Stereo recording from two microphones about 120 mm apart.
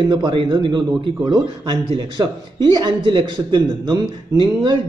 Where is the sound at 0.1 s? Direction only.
45° right (ahead or behind).